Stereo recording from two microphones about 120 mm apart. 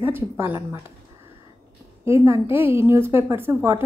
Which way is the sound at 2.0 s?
20° right (ahead or behind).